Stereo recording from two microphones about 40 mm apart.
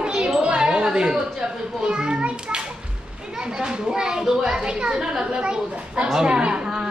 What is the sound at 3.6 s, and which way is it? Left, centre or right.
A woman's voice, centre.